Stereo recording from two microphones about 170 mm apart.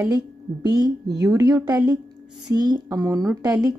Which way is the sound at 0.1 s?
25° right (ahead or behind).